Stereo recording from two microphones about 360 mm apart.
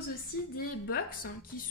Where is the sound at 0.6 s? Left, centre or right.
Left.